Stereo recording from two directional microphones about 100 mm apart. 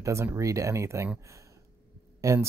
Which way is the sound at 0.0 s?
30° right (ahead or behind).